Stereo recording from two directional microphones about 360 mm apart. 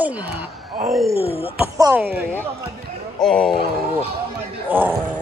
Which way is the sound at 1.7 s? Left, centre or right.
Centre.